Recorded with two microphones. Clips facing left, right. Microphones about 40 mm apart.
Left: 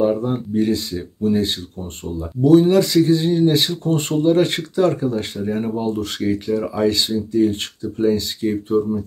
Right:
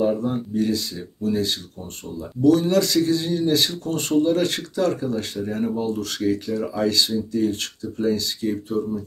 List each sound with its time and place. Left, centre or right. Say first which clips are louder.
0.0 s speech: left 3 dB; left